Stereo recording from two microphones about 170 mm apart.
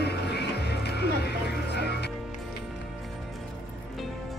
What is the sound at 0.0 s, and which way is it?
Music, 80° left.